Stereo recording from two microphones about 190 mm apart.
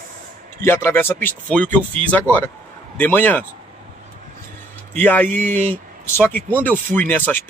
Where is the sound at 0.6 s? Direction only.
10° left (ahead or behind).